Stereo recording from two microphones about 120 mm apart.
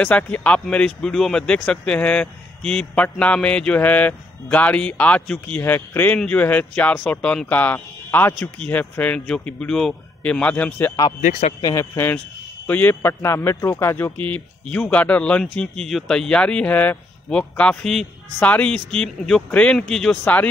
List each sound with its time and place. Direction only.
0.0 s speech: 10° left (ahead or behind)
11.1 s speech: 90° left
11.6 s speech: 25° left (ahead or behind); by 20.4 s 10° left (ahead or behind)